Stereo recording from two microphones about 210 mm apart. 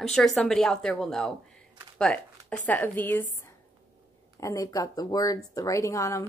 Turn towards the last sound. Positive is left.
turn(degrees=15)  # may be behind; listen again after turning